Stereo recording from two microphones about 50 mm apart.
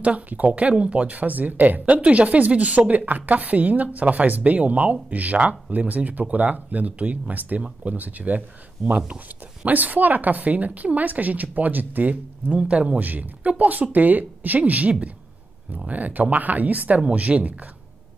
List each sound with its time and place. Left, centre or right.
0.0 s a woman's voice: right
8.9 s speech: centre
9.7 s a woman's voice: right